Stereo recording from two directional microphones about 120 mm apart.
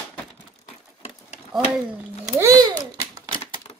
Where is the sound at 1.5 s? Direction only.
5° right (ahead or behind).